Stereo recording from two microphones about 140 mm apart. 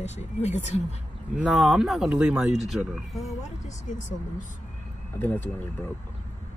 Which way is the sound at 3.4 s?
65° left (ahead or behind).